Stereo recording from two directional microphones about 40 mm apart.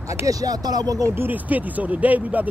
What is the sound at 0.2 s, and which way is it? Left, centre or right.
Speech, right.